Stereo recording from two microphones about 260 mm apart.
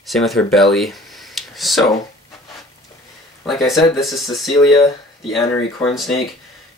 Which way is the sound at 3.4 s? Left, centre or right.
Centre.